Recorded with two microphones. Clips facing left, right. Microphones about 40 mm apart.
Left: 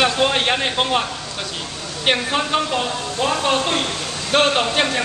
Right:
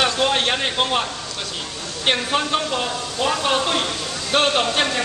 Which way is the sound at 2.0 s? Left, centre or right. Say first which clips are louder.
Left 1 dB; centre.